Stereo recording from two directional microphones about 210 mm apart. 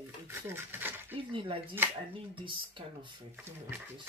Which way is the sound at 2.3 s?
25° right (ahead or behind).